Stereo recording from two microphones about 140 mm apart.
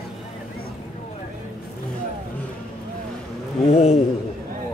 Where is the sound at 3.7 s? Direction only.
50° left (ahead or behind).